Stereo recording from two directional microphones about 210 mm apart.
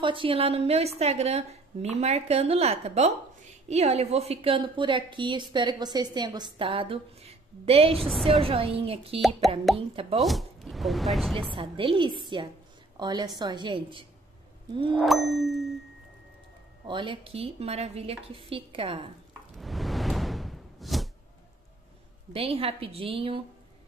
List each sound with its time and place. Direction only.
0.0 s a woman's voice: 25° right (ahead or behind)
8.0 s ding: centre (ahead or behind)
8.4 s a woman's voice: 25° right (ahead or behind)
10.2 s speech: centre (ahead or behind)
11.4 s a woman's voice: 25° right (ahead or behind)
15.0 s ding: centre (ahead or behind)
16.8 s a woman's voice: 25° right (ahead or behind)
19.5 s a sound: centre (ahead or behind)
22.3 s a woman's voice: 25° right (ahead or behind)